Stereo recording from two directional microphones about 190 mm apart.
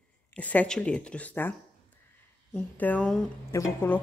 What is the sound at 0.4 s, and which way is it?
Speech, 10° left (ahead or behind).